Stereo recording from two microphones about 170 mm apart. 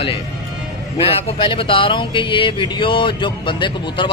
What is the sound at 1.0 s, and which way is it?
A man's voice, 30° left (ahead or behind).